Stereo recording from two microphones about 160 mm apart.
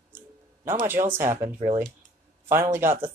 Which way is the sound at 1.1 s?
15° right (ahead or behind).